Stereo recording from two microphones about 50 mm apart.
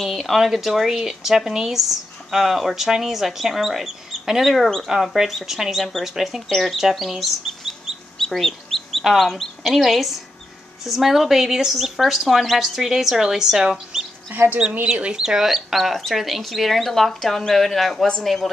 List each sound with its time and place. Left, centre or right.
0.0 s speech: centre
8.2 s chicken: centre
9.1 s speech: centre
14.3 s speech: right
14.9 s speech: centre